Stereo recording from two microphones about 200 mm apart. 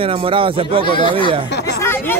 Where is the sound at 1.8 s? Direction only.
10° left (ahead or behind).